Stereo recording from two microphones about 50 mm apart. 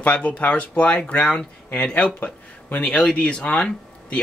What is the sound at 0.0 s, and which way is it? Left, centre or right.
Speech, left.